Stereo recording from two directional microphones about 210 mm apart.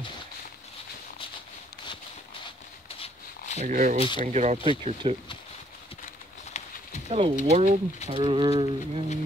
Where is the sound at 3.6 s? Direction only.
35° right (ahead or behind).